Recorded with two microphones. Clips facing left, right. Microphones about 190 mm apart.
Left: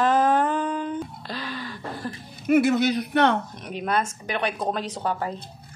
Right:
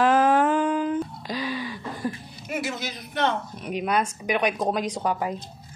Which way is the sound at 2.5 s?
60° left (ahead or behind).